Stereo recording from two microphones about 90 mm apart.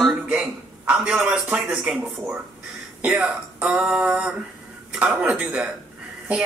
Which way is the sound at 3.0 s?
15° right (ahead or behind).